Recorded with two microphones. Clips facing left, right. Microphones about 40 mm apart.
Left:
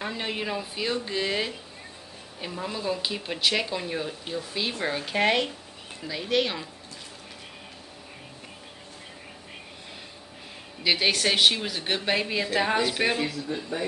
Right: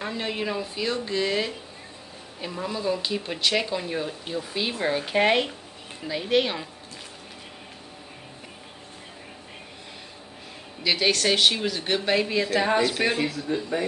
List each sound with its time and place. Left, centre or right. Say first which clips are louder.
0.0 s speech: right 2 dB; centre
10.8 s speech: right 1 dB; centre
13.2 s speech: right 3 dB; right